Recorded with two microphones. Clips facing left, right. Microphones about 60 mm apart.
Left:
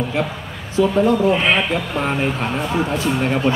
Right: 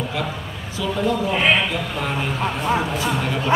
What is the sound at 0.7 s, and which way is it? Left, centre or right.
Speech, left.